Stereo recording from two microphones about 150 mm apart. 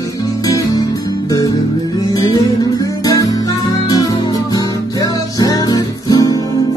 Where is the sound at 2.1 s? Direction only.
25° left (ahead or behind).